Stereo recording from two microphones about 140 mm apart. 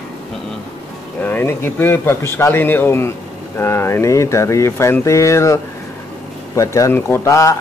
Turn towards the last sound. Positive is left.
turn(degrees=20)  # may be behind; listen again after turning